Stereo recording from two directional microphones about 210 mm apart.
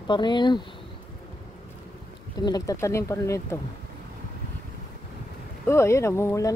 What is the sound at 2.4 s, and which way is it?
Speech, 15° left (ahead or behind).